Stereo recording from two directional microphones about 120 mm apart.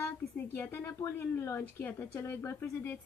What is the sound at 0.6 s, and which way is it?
A woman's voice, 15° left (ahead or behind).